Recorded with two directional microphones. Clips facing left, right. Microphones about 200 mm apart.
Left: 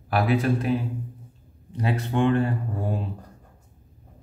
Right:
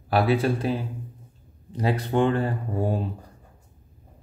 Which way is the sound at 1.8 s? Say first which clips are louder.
Right 2 dB; 35° right (ahead or behind).